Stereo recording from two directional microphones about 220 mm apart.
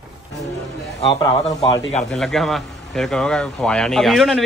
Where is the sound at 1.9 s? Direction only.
Centre (ahead or behind).